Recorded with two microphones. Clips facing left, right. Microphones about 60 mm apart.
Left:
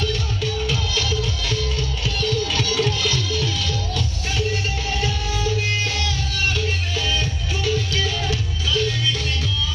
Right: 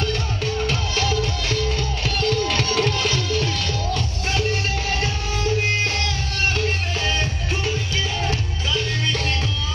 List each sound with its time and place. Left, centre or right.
0.7 s music: right
8.7 s music: right